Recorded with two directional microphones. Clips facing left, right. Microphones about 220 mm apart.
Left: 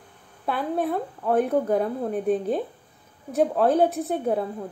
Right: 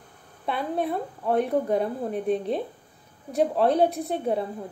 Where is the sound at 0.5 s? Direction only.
Centre (ahead or behind).